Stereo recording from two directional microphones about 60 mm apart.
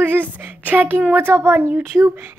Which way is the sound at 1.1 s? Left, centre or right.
Right.